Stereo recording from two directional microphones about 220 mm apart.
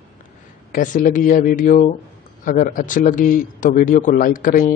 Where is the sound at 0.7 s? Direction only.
35° left (ahead or behind).